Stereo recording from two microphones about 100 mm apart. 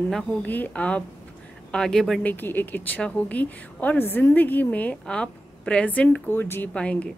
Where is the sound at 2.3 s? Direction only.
20° left (ahead or behind).